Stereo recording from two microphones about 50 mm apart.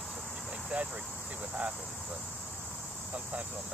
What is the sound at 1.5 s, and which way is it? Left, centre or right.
Speech, right.